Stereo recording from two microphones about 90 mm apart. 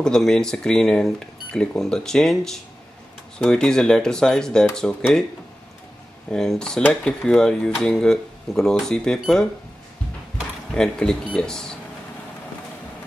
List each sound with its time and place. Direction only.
0.0 s speech: 5° left (ahead or behind)
6.3 s speech: 5° left (ahead or behind)
10.7 s speech: 10° left (ahead or behind)